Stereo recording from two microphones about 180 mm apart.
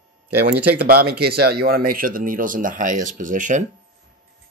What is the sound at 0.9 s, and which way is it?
Speech, 60° right (ahead or behind).